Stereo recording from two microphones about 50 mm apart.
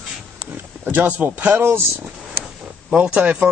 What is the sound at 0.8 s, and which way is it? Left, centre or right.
Speech, right.